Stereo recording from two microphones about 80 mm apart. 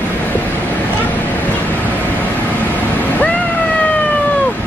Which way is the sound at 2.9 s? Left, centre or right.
Centre.